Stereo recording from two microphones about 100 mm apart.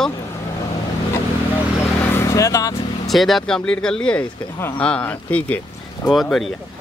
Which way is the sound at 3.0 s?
Centre (ahead or behind).